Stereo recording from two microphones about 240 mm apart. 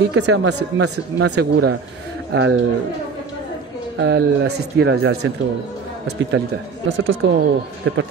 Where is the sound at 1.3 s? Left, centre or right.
Right.